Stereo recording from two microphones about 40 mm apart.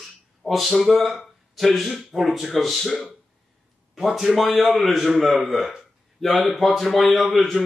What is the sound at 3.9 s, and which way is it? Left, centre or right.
A man's voice, centre.